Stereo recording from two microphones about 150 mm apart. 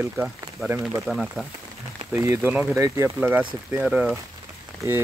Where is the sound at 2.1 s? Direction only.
15° right (ahead or behind).